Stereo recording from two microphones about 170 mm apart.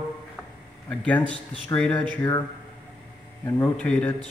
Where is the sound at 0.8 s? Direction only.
10° left (ahead or behind).